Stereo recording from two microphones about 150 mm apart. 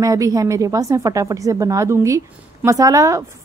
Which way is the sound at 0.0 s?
20° right (ahead or behind).